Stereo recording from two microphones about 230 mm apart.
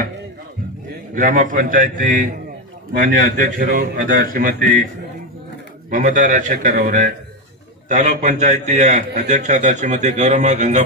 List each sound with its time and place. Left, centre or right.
1.1 s a man's voice: right
5.9 s a man's voice: right